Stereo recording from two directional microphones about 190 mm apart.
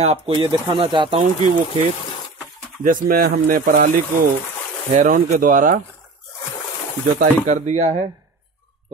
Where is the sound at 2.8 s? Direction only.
45° right (ahead or behind).